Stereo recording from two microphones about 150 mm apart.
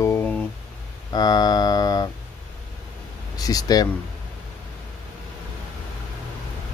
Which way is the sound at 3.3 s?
25° left (ahead or behind).